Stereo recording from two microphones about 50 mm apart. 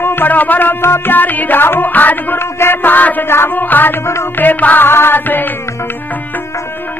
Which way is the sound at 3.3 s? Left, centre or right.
Left.